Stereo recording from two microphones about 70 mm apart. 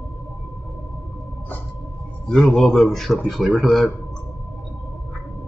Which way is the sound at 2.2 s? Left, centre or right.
Centre.